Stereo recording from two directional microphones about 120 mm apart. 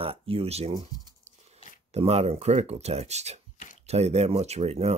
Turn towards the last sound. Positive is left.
turn(degrees=-60)  # may be behind; listen again after turning